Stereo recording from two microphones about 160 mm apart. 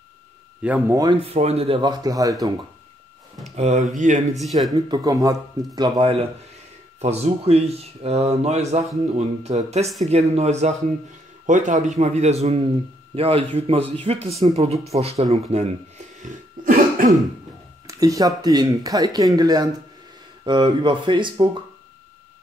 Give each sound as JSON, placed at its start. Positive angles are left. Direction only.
{"t": 0.6, "sound": "speech", "side_deg": -10}
{"t": 1.2, "sound": "a man's voice", "side_deg": -40}
{"t": 3.5, "sound": "speech", "side_deg": -45}
{"t": 4.4, "sound": "speech", "side_deg": 0}
{"t": 4.7, "sound": "a man's voice", "side_deg": -25}
{"t": 16.2, "sound": "cough", "side_deg": -55}
{"t": 17.8, "sound": "speech", "side_deg": -20}